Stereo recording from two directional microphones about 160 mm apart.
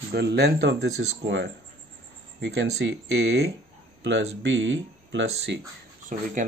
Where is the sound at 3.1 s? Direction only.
90° right.